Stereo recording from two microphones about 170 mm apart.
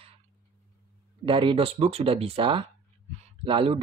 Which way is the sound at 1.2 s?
30° right (ahead or behind).